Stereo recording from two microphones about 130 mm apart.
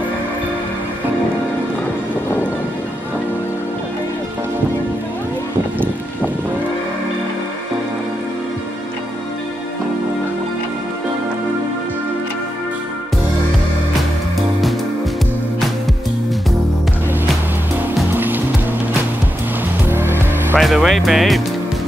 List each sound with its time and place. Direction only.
18.1 s music: 15° right (ahead or behind)
19.9 s music: 15° right (ahead or behind)
20.5 s music: centre (ahead or behind)